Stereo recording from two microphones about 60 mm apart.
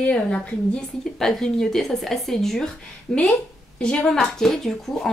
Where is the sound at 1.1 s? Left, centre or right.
Centre.